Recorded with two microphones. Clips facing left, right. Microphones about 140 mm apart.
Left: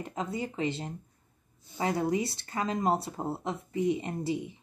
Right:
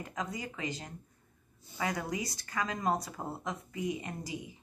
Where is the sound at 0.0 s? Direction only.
25° left (ahead or behind).